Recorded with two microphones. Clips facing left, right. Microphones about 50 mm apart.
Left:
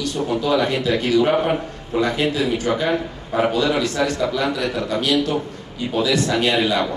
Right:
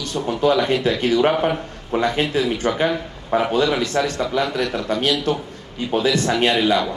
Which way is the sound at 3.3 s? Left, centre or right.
Right.